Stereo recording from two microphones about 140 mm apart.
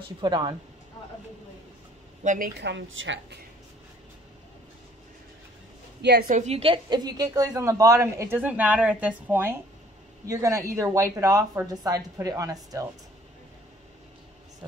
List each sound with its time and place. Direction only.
0.2 s speech: 30° right (ahead or behind)
2.2 s speech: 80° right
6.2 s a woman's voice: 60° right (ahead or behind); by 12.5 s 25° right (ahead or behind)